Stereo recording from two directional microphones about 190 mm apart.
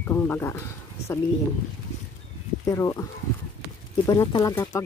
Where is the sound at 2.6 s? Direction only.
15° left (ahead or behind).